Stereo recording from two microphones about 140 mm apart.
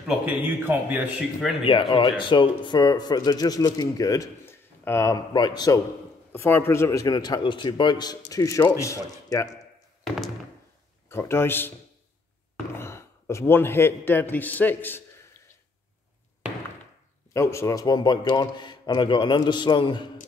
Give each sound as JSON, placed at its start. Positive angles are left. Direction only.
{"t": 0.1, "sound": "speech", "side_deg": -10}
{"t": 1.6, "sound": "speech", "side_deg": 35}
{"t": 5.3, "sound": "speech", "side_deg": 30}
{"t": 6.3, "sound": "speech", "side_deg": 15}
{"t": 11.1, "sound": "speech", "side_deg": 20}
{"t": 12.7, "sound": "a man's voice", "side_deg": 20}
{"t": 17.3, "sound": "speech", "side_deg": 20}